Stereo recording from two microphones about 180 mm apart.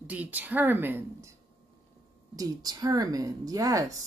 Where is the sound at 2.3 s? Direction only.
20° right (ahead or behind).